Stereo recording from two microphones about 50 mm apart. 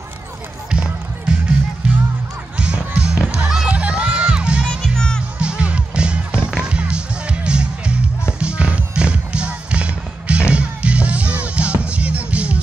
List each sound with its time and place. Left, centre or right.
0.7 s music: right
4.9 s music: centre
5.4 s music: right